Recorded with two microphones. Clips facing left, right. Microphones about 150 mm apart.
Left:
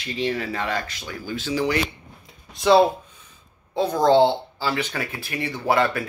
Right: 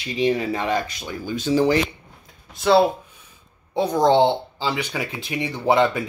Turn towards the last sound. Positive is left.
turn(degrees=-20)  # may be behind; listen again after turning